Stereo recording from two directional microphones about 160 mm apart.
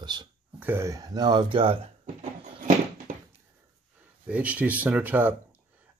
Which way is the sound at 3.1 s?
55° right (ahead or behind).